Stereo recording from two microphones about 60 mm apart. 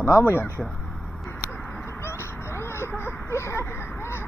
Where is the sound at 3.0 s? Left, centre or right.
Left.